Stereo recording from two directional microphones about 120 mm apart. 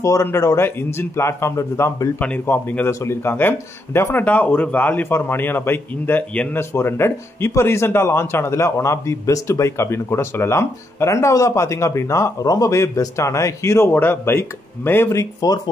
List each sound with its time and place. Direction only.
0.0 s speech: 25° left (ahead or behind)
2.1 s speech: 10° left (ahead or behind); by 15.6 s 30° left (ahead or behind)